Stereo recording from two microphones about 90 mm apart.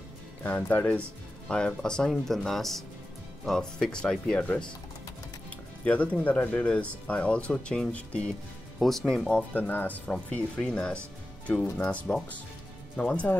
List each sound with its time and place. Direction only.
0.4 s speech: 15° left (ahead or behind)
5.9 s speech: 15° left (ahead or behind)
8.7 s speech: centre (ahead or behind)
9.5 s speech: 20° left (ahead or behind)